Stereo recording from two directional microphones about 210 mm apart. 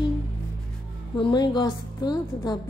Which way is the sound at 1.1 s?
20° left (ahead or behind).